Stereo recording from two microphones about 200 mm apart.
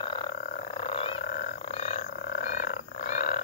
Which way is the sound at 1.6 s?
30° left (ahead or behind).